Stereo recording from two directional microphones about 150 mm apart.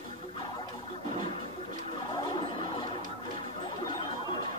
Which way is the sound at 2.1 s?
30° left (ahead or behind).